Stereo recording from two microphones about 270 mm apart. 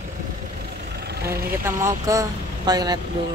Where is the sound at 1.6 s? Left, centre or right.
Centre.